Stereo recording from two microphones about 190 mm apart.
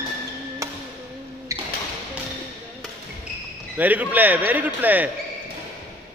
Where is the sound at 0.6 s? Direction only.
15° right (ahead or behind).